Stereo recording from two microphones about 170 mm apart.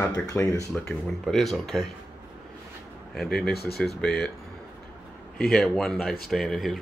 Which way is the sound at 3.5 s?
65° left (ahead or behind).